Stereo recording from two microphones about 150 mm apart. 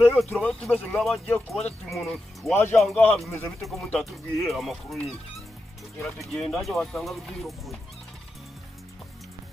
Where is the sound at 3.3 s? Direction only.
15° left (ahead or behind).